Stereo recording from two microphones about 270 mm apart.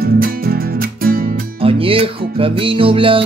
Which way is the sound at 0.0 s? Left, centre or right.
Right.